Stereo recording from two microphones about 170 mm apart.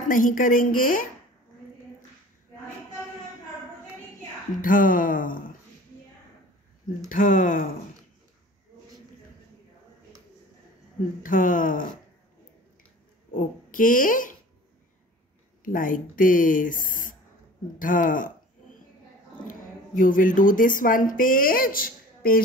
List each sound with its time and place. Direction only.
0.0 s speech: 50° left (ahead or behind)
4.6 s speech: 55° left (ahead or behind)
7.1 s speech: 50° left (ahead or behind)
11.2 s speech: 50° left (ahead or behind)
13.7 s speech: 50° left (ahead or behind)
15.6 s speech: 55° left (ahead or behind)
20.0 s speech: 50° left (ahead or behind)